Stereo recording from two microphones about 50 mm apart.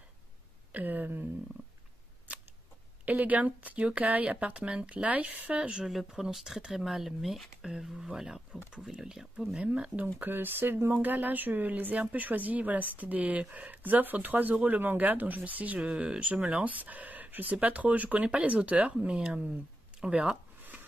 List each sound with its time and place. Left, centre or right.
0.7 s a sound: right
3.1 s speech: right
5.6 s speech: centre
5.9 s speech: centre
9.6 s speech: right
10.2 s speech: right
16.6 s speech: right